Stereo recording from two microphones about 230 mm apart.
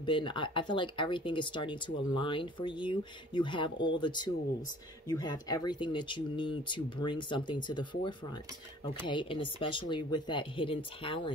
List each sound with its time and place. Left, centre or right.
0.0 s speech: left